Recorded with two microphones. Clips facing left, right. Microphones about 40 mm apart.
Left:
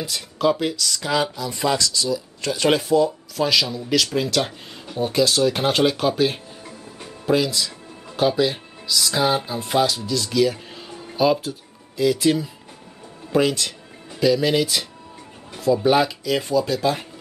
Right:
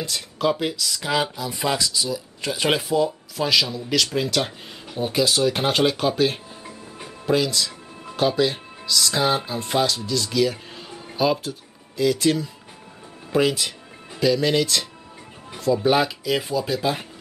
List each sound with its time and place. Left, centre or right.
0.0 s speech: centre